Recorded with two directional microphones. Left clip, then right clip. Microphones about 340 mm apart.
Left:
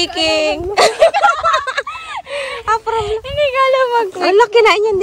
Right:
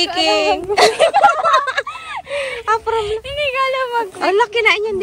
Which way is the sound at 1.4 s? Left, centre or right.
Centre.